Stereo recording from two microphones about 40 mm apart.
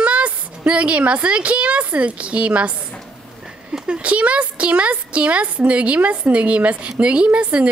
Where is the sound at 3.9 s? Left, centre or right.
Right.